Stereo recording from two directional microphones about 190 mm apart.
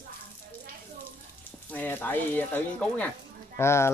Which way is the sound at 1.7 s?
10° left (ahead or behind).